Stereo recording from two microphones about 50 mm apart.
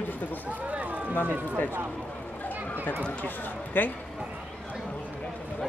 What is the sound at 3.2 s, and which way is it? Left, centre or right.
Speech, left.